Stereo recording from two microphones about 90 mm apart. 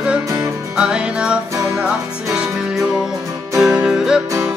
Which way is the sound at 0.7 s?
10° right (ahead or behind).